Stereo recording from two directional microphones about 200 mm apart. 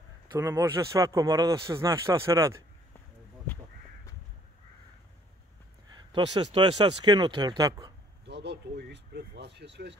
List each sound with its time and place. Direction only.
0.3 s speech: 15° right (ahead or behind)
5.9 s speech: 20° right (ahead or behind)
8.3 s speech: 60° right (ahead or behind)